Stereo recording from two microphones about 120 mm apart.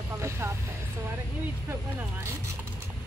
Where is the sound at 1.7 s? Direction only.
20° right (ahead or behind).